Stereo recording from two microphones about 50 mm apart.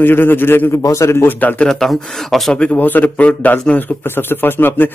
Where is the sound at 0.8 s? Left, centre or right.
Left.